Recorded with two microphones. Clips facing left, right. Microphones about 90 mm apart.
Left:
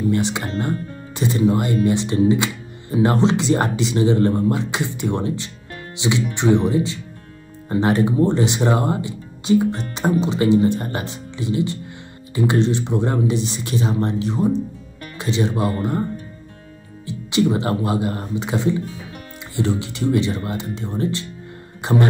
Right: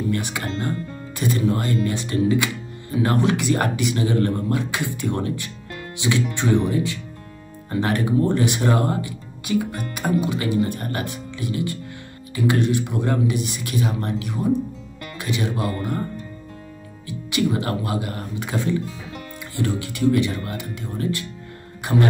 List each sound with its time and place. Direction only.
0.1 s speech: 20° left (ahead or behind)
17.0 s speech: 25° left (ahead or behind)